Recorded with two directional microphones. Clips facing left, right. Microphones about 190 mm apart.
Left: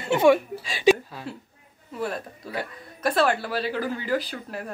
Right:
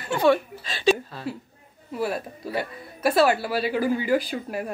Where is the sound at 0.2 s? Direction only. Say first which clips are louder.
Left 1 dB; 10° left (ahead or behind).